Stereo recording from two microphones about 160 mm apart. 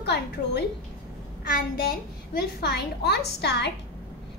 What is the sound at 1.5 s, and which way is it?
A child's voice, 70° left (ahead or behind).